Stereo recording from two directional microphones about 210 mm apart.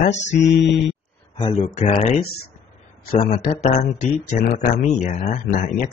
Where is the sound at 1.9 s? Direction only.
25° left (ahead or behind).